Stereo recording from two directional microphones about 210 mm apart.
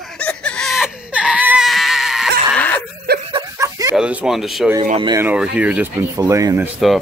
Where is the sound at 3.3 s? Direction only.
15° right (ahead or behind).